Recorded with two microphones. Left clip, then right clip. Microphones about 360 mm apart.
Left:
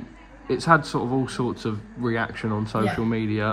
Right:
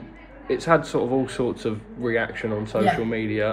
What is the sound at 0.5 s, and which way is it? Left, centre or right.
Speech, centre.